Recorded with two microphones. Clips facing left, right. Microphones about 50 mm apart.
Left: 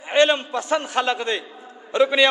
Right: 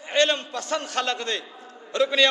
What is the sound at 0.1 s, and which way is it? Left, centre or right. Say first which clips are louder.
A man's voice: left 5 dB; centre.